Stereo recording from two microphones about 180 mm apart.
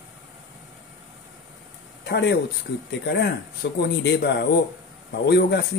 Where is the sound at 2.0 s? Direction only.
70° left (ahead or behind).